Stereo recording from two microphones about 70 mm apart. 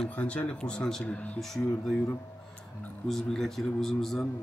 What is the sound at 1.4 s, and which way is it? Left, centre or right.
Speech, centre.